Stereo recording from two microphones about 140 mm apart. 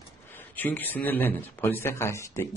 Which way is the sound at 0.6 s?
15° left (ahead or behind).